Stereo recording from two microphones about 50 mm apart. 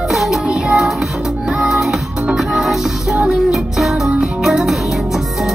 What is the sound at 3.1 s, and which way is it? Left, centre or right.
Music, centre.